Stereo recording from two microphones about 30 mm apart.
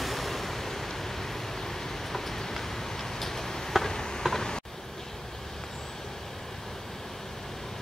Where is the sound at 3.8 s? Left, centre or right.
Left.